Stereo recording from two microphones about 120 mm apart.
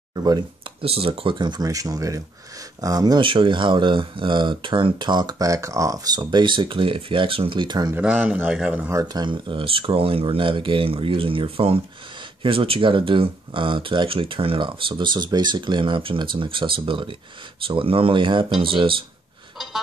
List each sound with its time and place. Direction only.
0.1 s speech: 35° right (ahead or behind)
0.8 s speech: 50° right (ahead or behind)
7.9 s speech: 10° right (ahead or behind)
8.9 s speech: 35° right (ahead or behind)